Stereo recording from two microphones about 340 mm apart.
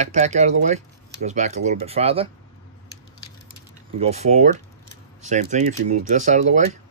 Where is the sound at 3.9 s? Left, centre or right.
Centre.